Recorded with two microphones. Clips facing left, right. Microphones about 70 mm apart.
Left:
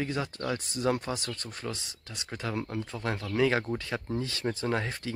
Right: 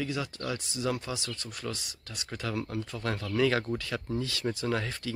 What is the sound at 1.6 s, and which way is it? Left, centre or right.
Speech, left.